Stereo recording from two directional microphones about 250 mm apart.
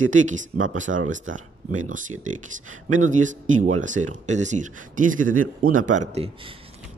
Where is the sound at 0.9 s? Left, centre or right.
Right.